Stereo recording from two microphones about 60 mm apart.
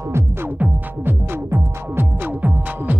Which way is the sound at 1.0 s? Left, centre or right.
Right.